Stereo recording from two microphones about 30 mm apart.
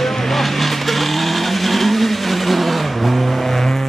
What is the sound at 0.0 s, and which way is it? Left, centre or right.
Vehicle, centre.